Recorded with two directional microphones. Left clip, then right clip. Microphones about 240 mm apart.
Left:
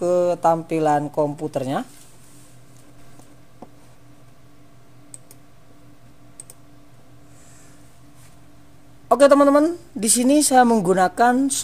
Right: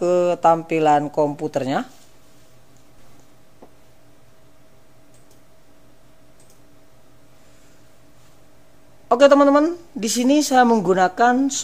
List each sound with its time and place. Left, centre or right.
0.0 s speech: centre
9.1 s speech: left